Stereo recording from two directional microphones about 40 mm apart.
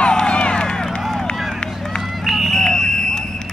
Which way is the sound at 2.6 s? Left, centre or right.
Centre.